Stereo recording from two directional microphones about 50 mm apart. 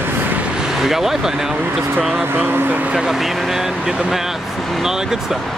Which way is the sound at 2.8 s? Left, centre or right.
Right.